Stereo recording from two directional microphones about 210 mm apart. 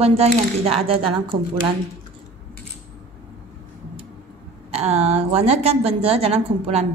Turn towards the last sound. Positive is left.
turn(degrees=-30)  # may be behind; listen again after turning